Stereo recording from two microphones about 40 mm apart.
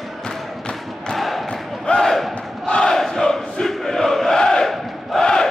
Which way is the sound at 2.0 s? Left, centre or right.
Centre.